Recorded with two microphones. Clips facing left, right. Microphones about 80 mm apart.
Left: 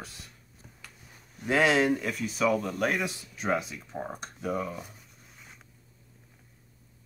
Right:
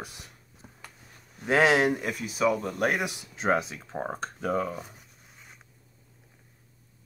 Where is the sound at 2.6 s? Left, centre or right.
Right.